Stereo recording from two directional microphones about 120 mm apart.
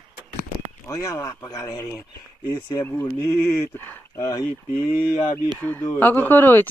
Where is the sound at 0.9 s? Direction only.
25° left (ahead or behind).